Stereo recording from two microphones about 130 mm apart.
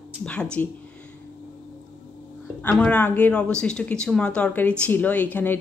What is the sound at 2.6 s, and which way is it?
Speech, 10° left (ahead or behind).